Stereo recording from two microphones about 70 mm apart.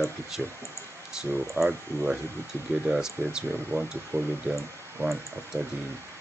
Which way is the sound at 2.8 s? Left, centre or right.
Centre.